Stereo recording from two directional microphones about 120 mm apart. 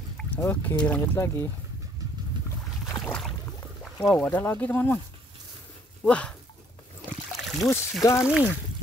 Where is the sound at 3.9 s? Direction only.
25° left (ahead or behind).